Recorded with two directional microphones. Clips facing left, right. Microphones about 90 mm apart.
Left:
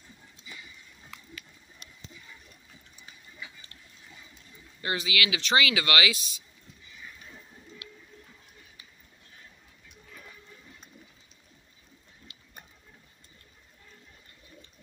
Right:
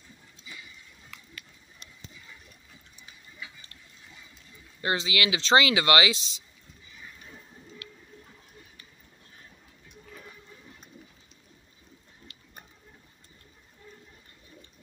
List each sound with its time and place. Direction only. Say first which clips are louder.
4.8 s speech: right 2 dB; 25° right (ahead or behind)
7.8 s bird: right 1 dB; 10° left (ahead or behind)
12.3 s tick-tock: right 1 dB; 10° left (ahead or behind)